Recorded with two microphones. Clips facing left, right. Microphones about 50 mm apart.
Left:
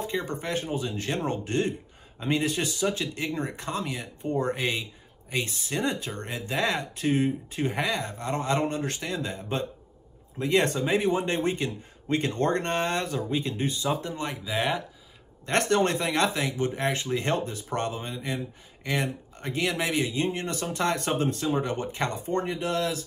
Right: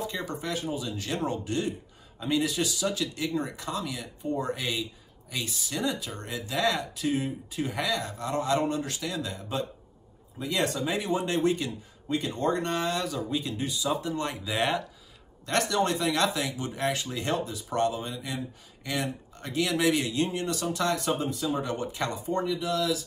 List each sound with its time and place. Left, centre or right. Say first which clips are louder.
0.0 s speech: left 2 dB; left
12.1 s speech: left 2 dB; left
14.3 s speech: left 2 dB; centre
15.4 s speech: left 2 dB; left
20.3 s speech: right 1 dB; left
21.2 s speech: left 3 dB; left
21.5 s speech: left 2 dB; left